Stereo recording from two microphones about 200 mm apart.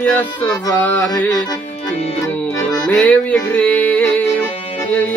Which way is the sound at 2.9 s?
5° left (ahead or behind).